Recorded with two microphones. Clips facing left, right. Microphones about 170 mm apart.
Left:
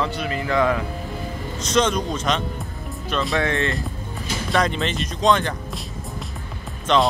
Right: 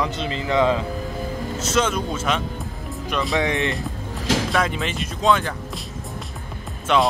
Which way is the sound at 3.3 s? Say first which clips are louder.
Right 1 dB; 20° right (ahead or behind).